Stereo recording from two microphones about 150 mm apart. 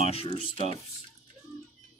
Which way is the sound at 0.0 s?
40° left (ahead or behind).